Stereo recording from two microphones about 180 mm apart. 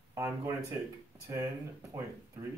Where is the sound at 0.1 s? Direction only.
15° right (ahead or behind).